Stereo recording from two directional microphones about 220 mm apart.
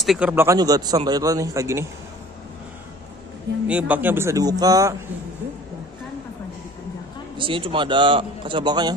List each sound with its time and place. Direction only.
0.0 s a man's voice: 5° right (ahead or behind)
3.6 s a man's voice: 5° right (ahead or behind)
7.3 s a man's voice: 25° right (ahead or behind)